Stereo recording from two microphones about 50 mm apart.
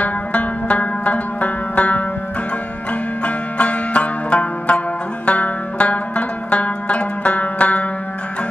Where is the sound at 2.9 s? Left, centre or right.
Left.